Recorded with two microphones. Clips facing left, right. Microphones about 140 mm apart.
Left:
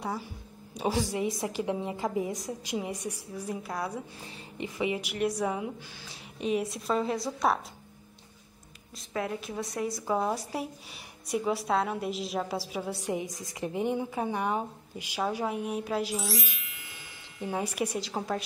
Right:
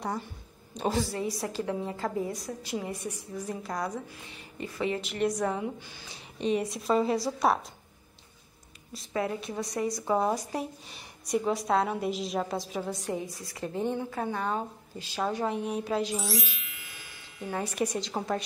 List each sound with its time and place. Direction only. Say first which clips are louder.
0.0 s a woman's voice: right 1 dB; 5° left (ahead or behind)
8.9 s a woman's voice: right 2 dB; centre (ahead or behind)
16.6 s music: even; centre (ahead or behind)
17.5 s a woman's voice: right 1 dB; 10° left (ahead or behind)